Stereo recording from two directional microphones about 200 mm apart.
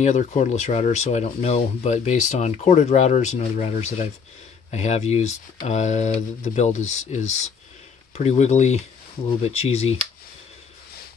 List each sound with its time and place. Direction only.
0.0 s speech: 35° left (ahead or behind)
8.2 s speech: 35° left (ahead or behind)